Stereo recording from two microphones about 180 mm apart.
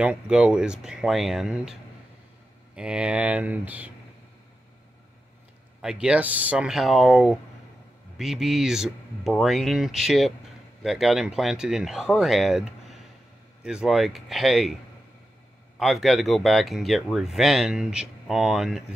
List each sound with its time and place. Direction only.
0.0 s speech: 5° right (ahead or behind)
5.8 s speech: 5° right (ahead or behind)
15.8 s speech: centre (ahead or behind)